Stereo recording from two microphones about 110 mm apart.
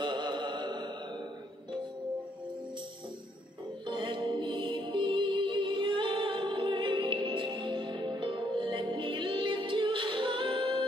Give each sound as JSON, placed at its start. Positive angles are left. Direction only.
{"t": 0.0, "sound": "mantra", "side_deg": -45}
{"t": 3.8, "sound": "music", "side_deg": -50}